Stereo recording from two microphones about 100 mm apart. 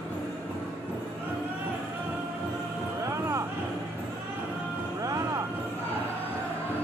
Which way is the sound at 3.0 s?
30° right (ahead or behind).